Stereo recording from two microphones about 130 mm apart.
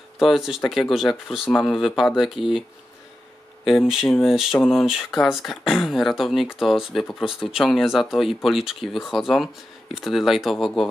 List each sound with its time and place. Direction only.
0.2 s speech: centre (ahead or behind)
3.6 s speech: 5° right (ahead or behind)